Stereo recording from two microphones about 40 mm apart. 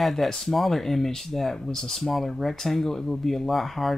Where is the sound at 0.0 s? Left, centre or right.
Centre.